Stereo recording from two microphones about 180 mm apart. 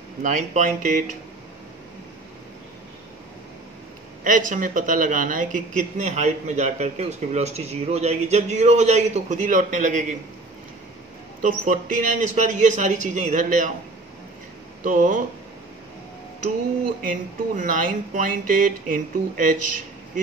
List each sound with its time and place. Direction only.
0.2 s speech: 45° right (ahead or behind)
4.2 s a man's voice: 45° right (ahead or behind)
11.4 s speech: 45° right (ahead or behind)
14.9 s speech: 45° right (ahead or behind)
17.0 s speech: 50° right (ahead or behind)